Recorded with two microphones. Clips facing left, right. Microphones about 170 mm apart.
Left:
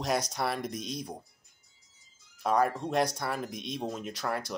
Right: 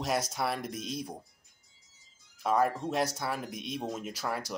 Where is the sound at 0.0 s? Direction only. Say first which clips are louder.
Left 1 dB; 5° right (ahead or behind).